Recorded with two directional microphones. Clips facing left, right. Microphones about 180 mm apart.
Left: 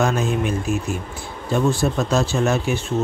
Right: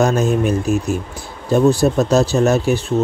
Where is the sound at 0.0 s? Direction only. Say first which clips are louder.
Right 5 dB; 40° right (ahead or behind).